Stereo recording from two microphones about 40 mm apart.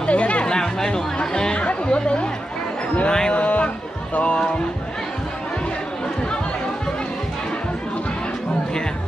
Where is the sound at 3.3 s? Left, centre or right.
Left.